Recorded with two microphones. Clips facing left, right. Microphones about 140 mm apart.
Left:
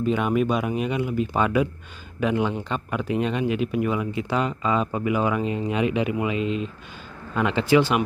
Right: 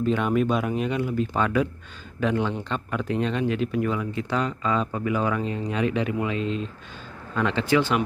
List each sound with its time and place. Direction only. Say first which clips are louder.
0.0 s speech: left 1 dB; 5° left (ahead or behind)